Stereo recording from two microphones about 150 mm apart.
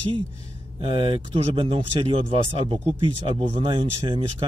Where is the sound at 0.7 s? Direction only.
35° right (ahead or behind).